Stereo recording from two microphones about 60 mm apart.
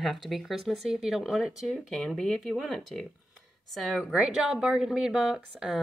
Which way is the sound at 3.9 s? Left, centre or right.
Centre.